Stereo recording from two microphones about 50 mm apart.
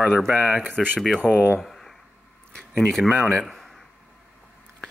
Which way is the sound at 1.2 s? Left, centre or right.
Centre.